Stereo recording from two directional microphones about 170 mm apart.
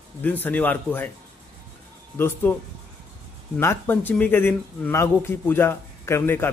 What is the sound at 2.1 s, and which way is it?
Speech, 15° left (ahead or behind).